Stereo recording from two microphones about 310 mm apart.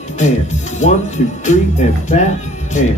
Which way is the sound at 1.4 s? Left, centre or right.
Left.